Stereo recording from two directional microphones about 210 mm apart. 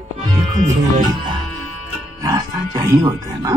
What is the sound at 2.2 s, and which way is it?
Speech, 15° right (ahead or behind).